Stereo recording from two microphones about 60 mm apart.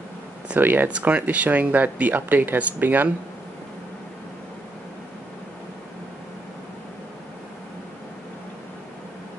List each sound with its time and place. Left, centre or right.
0.6 s speech: right
0.8 s speech: centre